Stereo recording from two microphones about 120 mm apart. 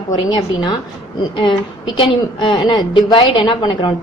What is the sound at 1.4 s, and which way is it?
A woman's voice, 40° left (ahead or behind).